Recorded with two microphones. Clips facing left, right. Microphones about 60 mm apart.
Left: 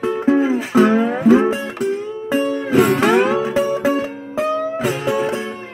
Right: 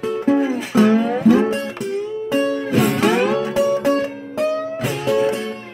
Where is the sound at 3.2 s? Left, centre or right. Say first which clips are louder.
Even; centre.